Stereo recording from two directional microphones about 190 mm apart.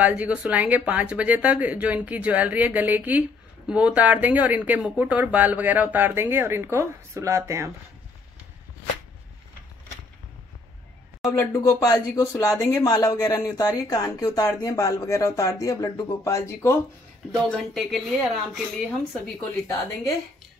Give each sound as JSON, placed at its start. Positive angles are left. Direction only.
{"t": 0.0, "sound": "a woman's voice", "side_deg": -5}
{"t": 11.2, "sound": "speech", "side_deg": 15}
{"t": 17.5, "sound": "a woman's voice", "side_deg": 0}